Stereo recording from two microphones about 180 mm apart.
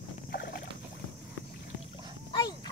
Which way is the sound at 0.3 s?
60° left (ahead or behind).